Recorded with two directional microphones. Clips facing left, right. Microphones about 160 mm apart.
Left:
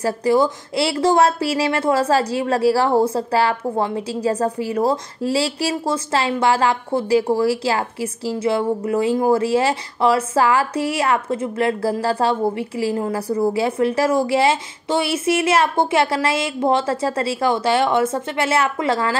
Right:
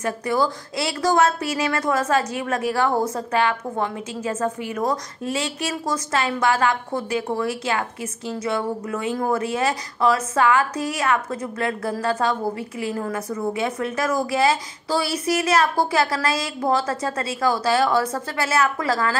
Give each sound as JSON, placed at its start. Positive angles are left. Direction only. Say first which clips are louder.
{"t": 0.0, "sound": "speech", "louder": "left 5 dB", "side_deg": 30}